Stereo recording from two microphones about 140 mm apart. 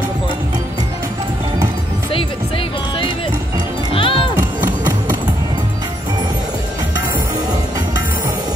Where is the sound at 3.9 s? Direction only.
40° left (ahead or behind).